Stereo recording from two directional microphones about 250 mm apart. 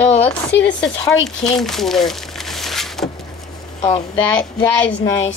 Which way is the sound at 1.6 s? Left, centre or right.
Centre.